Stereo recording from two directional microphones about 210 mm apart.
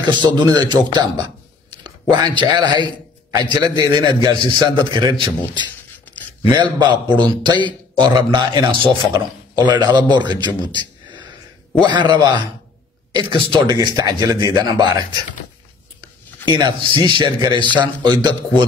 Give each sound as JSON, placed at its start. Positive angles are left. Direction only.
{"t": 0.1, "sound": "speech", "side_deg": -20}
{"t": 6.5, "sound": "speech", "side_deg": -20}
{"t": 11.8, "sound": "speech", "side_deg": -20}
{"t": 16.4, "sound": "speech", "side_deg": -20}